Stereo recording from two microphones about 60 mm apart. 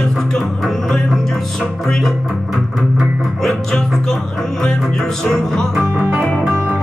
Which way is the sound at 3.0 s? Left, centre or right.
Centre.